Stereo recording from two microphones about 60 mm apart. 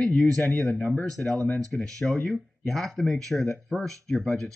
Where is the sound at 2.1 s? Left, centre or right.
Left.